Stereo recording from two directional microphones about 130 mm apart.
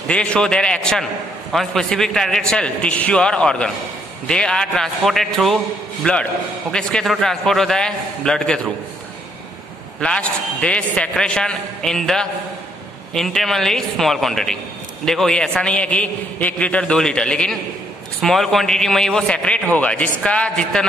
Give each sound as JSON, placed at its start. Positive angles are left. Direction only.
{"t": 0.1, "sound": "a man's voice", "side_deg": 5}
{"t": 9.9, "sound": "a man's voice", "side_deg": 5}